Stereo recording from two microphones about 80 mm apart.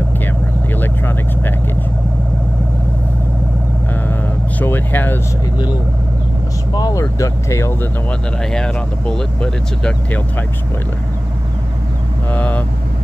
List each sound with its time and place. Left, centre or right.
0.7 s vehicle: left
4.1 s vehicle: left
6.7 s speech: left
8.1 s speech: centre
12.3 s speech: centre